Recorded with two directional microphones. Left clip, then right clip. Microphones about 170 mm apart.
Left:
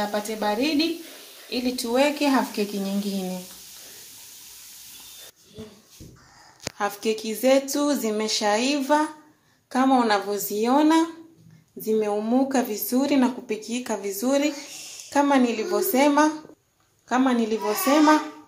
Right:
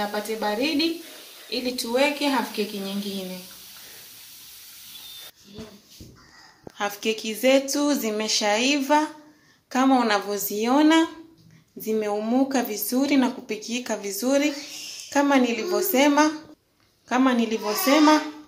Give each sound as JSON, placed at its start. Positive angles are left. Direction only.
{"t": 0.1, "sound": "speech", "side_deg": 55}
{"t": 6.8, "sound": "speech", "side_deg": 10}